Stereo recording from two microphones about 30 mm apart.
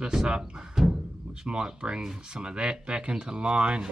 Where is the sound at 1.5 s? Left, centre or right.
Right.